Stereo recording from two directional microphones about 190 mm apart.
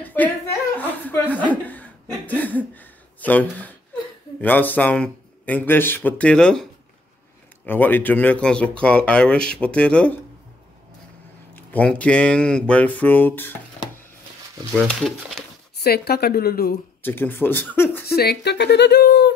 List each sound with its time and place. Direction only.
0.0 s laughter: 10° left (ahead or behind)
0.7 s chuckle: 10° left (ahead or behind)
4.4 s a man's voice: 10° left (ahead or behind)
11.5 s a man's voice: 5° left (ahead or behind)
14.8 s speech: centre (ahead or behind)
15.8 s speech: 55° left (ahead or behind)
17.0 s a man's voice: 10° left (ahead or behind)
18.0 s speech: 55° left (ahead or behind)